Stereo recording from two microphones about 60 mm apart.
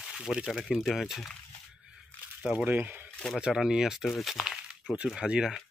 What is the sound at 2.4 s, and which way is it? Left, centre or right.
Speech, centre.